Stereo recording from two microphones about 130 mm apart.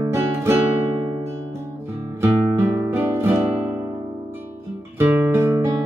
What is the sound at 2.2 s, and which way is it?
Music, 15° right (ahead or behind).